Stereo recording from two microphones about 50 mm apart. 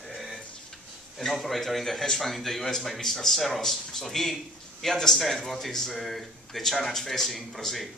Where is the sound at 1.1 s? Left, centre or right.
Centre.